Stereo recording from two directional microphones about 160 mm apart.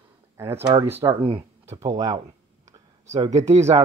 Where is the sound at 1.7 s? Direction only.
20° right (ahead or behind).